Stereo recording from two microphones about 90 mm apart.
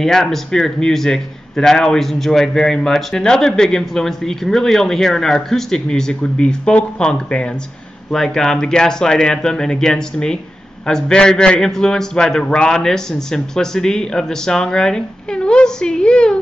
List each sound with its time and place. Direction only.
0.0 s a man's voice: 5° left (ahead or behind)